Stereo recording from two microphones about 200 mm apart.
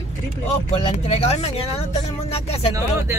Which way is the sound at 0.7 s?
30° left (ahead or behind).